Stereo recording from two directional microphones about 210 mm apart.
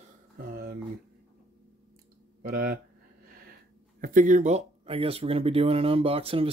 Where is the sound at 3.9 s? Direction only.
40° right (ahead or behind).